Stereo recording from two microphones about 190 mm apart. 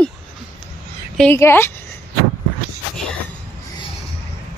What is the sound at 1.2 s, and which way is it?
Speech, 10° left (ahead or behind).